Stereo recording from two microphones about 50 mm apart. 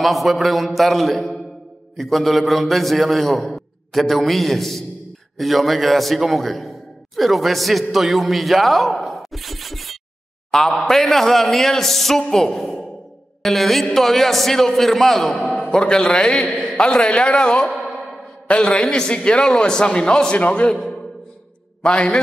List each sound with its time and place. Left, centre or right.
0.0 s a man's voice: centre
10.5 s a man's voice: centre
21.8 s a man's voice: centre